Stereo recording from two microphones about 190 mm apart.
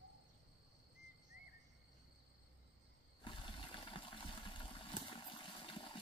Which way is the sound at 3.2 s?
25° left (ahead or behind).